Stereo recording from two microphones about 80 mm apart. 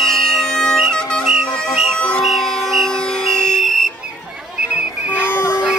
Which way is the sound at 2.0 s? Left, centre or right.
Centre.